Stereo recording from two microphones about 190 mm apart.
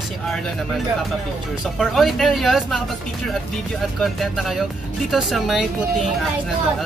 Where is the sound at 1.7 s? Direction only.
Centre (ahead or behind).